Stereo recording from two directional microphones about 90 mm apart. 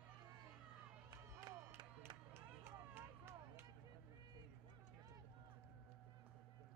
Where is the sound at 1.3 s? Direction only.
30° right (ahead or behind).